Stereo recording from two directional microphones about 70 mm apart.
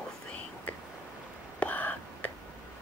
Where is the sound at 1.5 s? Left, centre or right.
Left.